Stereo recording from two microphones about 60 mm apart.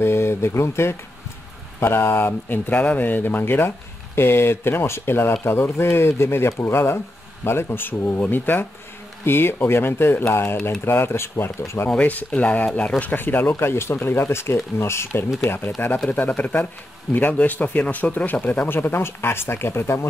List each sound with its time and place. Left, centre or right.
0.0 s speech: left
11.9 s speech: left
13.0 s speech: left
13.6 s speech: left
16.1 s speech: left